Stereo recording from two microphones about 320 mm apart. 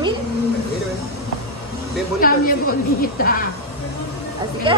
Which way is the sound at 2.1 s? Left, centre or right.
Left.